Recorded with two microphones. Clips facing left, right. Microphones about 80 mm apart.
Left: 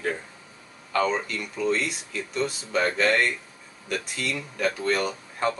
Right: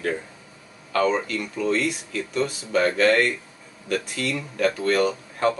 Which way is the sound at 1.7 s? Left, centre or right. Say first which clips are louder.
Right 3 dB; centre.